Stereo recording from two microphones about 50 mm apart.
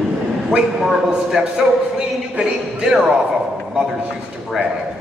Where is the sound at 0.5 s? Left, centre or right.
Centre.